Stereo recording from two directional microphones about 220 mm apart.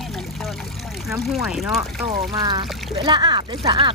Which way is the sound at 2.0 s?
20° right (ahead or behind).